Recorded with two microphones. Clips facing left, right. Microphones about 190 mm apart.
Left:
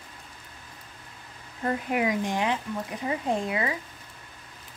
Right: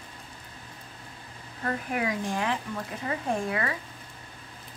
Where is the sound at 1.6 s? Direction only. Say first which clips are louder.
Left 3 dB; 20° left (ahead or behind).